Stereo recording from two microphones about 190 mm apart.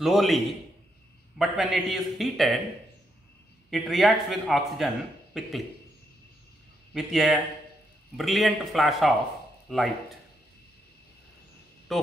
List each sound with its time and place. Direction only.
0.0 s a man's voice: centre (ahead or behind)
1.4 s a man's voice: centre (ahead or behind)
3.7 s a man's voice: centre (ahead or behind)
6.9 s a man's voice: centre (ahead or behind)
11.9 s speech: centre (ahead or behind)